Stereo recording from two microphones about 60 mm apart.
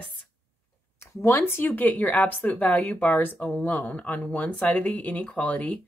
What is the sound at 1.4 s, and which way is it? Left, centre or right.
Speech, left.